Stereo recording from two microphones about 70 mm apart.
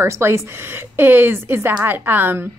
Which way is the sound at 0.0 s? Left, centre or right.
Right.